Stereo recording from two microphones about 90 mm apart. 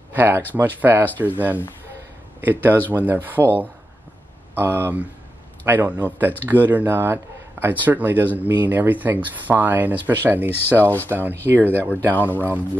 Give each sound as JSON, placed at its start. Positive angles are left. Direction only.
{"t": 0.1, "sound": "speech", "side_deg": -20}
{"t": 4.6, "sound": "speech", "side_deg": -20}
{"t": 10.8, "sound": "speech", "side_deg": 20}
{"t": 11.1, "sound": "speech", "side_deg": -25}
{"t": 12.1, "sound": "speech", "side_deg": 20}